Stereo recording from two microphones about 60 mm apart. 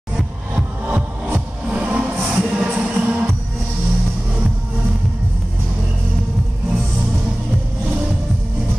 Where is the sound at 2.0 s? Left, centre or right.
Right.